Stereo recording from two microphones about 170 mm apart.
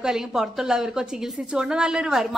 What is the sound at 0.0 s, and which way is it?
A woman's voice, 5° right (ahead or behind).